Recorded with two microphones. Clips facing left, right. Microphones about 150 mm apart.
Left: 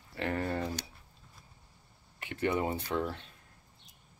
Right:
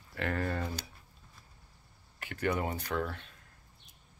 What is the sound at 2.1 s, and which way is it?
Speech, 25° left (ahead or behind).